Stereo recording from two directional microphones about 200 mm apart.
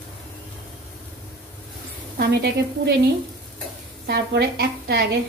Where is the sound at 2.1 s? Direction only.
55° right (ahead or behind).